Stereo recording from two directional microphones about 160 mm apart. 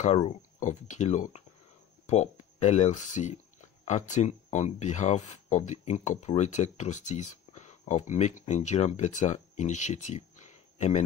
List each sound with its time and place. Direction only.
0.0 s speech: 45° left (ahead or behind)